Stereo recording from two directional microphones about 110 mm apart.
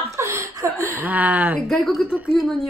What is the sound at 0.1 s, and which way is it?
Chuckle, 25° right (ahead or behind).